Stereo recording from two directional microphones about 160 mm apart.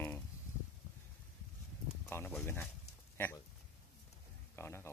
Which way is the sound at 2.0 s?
15° left (ahead or behind).